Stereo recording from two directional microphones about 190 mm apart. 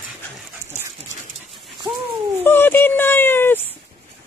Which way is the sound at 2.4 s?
10° left (ahead or behind).